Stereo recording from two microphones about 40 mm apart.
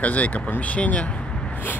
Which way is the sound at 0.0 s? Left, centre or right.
Left.